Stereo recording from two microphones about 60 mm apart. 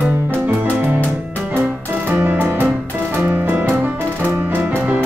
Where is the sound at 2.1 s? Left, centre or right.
Right.